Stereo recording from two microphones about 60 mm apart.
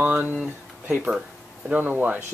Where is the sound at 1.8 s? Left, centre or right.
Right.